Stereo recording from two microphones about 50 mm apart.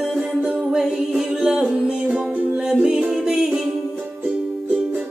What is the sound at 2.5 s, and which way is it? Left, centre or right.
Music, centre.